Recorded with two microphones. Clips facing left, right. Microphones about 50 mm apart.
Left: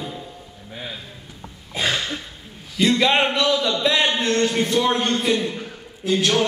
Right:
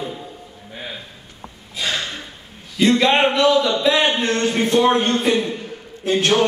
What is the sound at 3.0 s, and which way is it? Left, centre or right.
Speech, centre.